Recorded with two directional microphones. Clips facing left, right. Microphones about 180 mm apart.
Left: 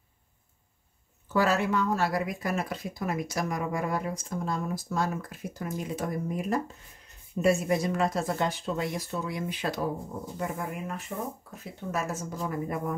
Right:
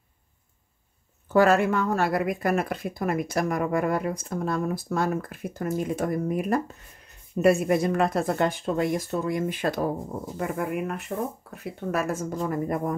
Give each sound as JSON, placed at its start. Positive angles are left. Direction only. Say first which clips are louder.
{"t": 1.3, "sound": "speech", "louder": "right 6 dB", "side_deg": -55}
{"t": 10.3, "sound": "speech", "louder": "right 6 dB", "side_deg": -60}
{"t": 12.4, "sound": "speech", "louder": "right 4 dB", "side_deg": -45}